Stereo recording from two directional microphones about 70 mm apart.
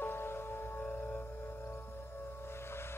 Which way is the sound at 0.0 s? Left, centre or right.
Left.